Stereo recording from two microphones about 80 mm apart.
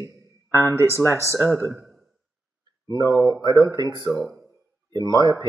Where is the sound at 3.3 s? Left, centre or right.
Right.